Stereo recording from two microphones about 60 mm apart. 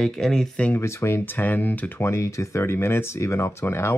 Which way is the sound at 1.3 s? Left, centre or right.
Left.